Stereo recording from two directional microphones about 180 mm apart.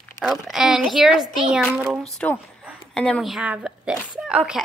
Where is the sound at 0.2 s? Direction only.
Centre (ahead or behind).